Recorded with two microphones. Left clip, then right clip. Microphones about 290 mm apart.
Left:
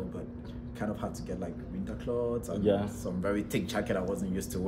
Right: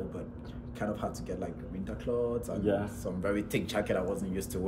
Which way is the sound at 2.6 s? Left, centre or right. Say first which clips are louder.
Left 3 dB; left.